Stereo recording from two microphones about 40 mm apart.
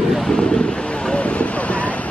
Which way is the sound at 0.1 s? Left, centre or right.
Centre.